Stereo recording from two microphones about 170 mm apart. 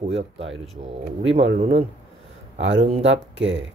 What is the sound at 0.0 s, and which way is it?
Speech, 35° right (ahead or behind).